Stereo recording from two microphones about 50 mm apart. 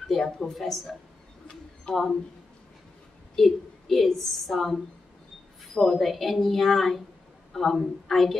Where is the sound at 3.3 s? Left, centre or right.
Centre.